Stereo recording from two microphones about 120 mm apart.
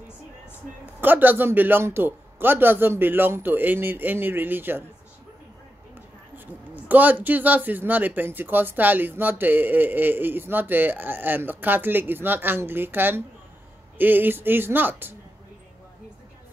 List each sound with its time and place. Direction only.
1.0 s speech: 15° right (ahead or behind)
6.3 s speech: 15° right (ahead or behind)